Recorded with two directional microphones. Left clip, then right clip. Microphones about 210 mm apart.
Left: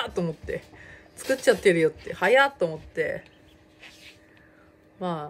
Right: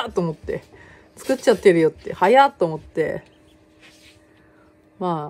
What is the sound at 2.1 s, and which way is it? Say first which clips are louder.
A woman's voice: right 6 dB; 45° right (ahead or behind).